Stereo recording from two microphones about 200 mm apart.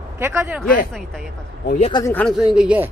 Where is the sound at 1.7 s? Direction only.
30° left (ahead or behind).